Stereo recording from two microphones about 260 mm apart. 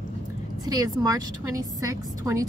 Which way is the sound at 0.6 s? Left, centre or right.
Centre.